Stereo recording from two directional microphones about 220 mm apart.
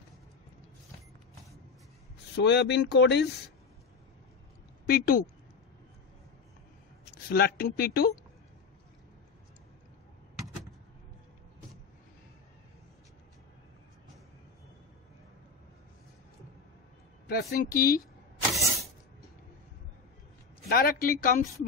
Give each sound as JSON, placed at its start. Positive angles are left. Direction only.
{"t": 2.3, "sound": "speech", "side_deg": 50}
{"t": 4.8, "sound": "a woman's voice", "side_deg": 40}
{"t": 7.2, "sound": "speech", "side_deg": 45}
{"t": 17.3, "sound": "a woman's voice", "side_deg": 45}
{"t": 18.5, "sound": "a sound", "side_deg": 0}
{"t": 20.6, "sound": "a woman's voice", "side_deg": 40}